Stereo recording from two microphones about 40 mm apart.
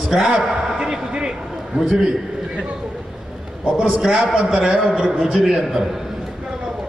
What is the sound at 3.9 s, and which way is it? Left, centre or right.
A man's voice, centre.